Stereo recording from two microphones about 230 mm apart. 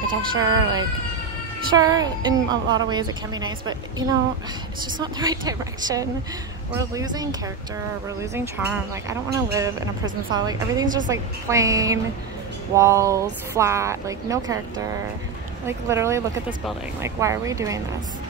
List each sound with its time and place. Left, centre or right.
0.0 s speech: centre
0.5 s speech: right
1.7 s speech: centre
10.3 s speech: centre